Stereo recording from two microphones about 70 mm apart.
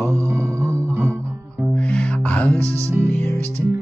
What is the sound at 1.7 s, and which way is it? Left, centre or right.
Music, centre.